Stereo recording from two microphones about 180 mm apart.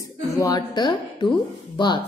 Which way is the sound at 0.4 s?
20° left (ahead or behind).